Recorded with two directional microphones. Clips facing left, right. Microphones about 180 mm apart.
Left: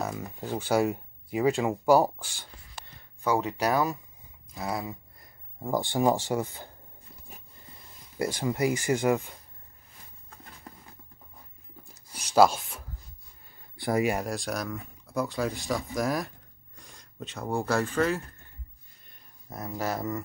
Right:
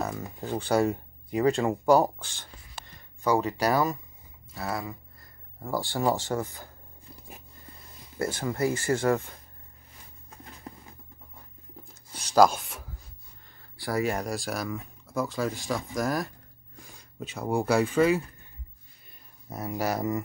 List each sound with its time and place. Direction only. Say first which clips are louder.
0.0 s music: right 1 dB; centre (ahead or behind)
0.6 s speech: right 1 dB; 5° left (ahead or behind)
3.3 s speech: right 1 dB; centre (ahead or behind)
4.6 s speech: even; 20° left (ahead or behind)
8.2 s speech: left 1 dB; 15° left (ahead or behind)
12.1 s a sound: right 1 dB; 30° right (ahead or behind)
12.4 s speech: even; centre (ahead or behind)
13.6 s a sound: left 2 dB; 20° left (ahead or behind)
14.1 s speech: even; centre (ahead or behind)
16.7 s a sound: right 2 dB; centre (ahead or behind)
17.5 s speech: right 3 dB; 15° right (ahead or behind)
19.6 s speech: right 3 dB; 15° right (ahead or behind)